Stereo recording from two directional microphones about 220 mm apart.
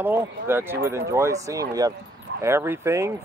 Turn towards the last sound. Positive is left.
turn(degrees=-10)  # may be behind; listen again after turning